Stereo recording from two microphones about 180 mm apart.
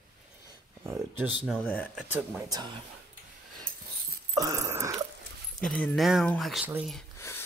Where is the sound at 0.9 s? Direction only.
10° right (ahead or behind).